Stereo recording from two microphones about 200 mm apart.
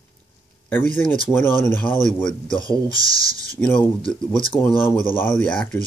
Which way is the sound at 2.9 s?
15° right (ahead or behind).